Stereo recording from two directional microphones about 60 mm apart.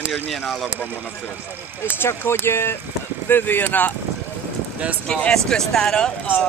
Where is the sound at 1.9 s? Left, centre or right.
Left.